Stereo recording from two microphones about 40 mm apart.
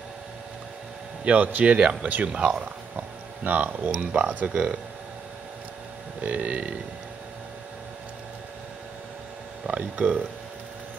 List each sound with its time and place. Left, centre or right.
1.2 s speech: right
3.4 s speech: right
4.0 s speech: right
6.2 s speech: right
9.7 s speech: right